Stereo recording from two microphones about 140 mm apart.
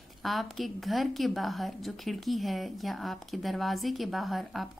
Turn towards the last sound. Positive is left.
turn(degrees=0)  # may be behind; listen again after turning